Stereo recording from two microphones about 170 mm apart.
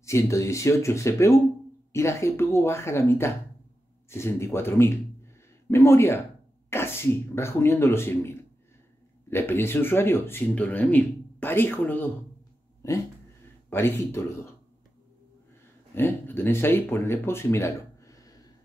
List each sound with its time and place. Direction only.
0.0 s speech: 15° left (ahead or behind)
13.7 s speech: 15° left (ahead or behind)
15.9 s speech: 15° left (ahead or behind)